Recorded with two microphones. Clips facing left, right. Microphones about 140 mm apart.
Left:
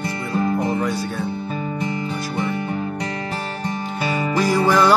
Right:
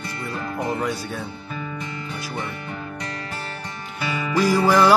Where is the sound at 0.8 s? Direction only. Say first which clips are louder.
Left 3 dB; centre (ahead or behind).